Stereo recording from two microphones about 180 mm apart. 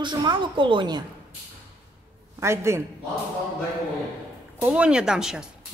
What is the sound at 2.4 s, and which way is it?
Speech, 15° right (ahead or behind).